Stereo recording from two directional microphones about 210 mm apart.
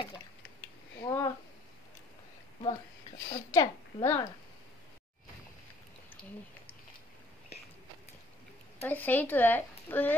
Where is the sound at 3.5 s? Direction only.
15° left (ahead or behind).